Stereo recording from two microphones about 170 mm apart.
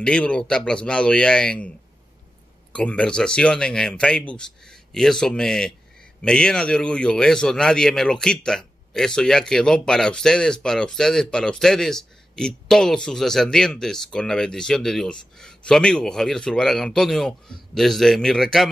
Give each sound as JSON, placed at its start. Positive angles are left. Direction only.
{"t": 0.0, "sound": "speech", "side_deg": 5}
{"t": 2.7, "sound": "speech", "side_deg": 5}